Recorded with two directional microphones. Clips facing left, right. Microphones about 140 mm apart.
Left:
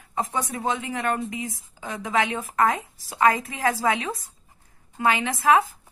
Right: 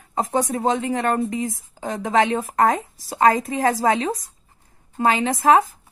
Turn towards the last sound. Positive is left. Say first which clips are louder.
# right 4 dB
turn(degrees=-45)  # may be behind; listen again after turning